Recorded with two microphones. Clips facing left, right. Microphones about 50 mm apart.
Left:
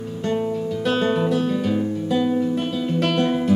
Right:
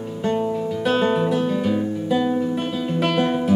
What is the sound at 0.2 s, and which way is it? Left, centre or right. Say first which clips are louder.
Music: right 1 dB; centre.